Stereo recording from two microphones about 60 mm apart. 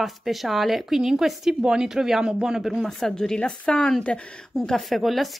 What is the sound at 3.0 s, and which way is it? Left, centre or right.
A woman's voice, centre.